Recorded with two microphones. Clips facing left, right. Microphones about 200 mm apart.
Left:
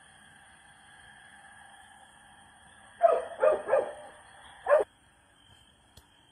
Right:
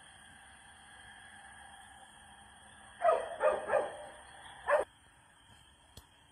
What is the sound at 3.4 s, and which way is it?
Bow-wow, 60° left (ahead or behind).